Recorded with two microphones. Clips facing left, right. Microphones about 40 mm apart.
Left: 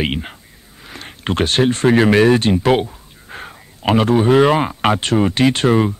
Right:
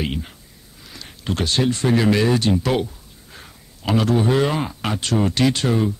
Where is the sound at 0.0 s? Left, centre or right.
Left.